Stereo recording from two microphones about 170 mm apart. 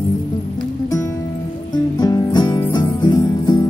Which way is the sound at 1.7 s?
25° left (ahead or behind).